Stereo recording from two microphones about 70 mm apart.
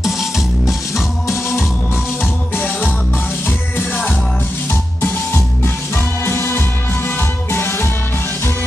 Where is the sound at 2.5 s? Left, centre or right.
Left.